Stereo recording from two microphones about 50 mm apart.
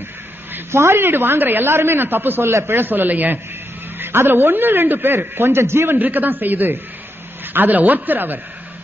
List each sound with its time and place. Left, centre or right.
0.7 s a man's voice: right
4.0 s a man's voice: right
5.9 s a man's voice: right